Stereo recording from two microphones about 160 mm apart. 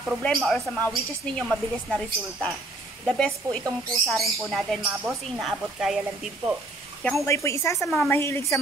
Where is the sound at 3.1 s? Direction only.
5° left (ahead or behind).